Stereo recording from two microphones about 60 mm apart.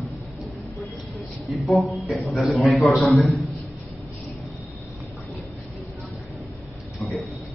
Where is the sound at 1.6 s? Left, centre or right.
Centre.